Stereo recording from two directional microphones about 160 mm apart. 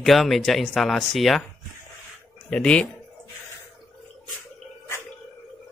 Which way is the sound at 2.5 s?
5° left (ahead or behind).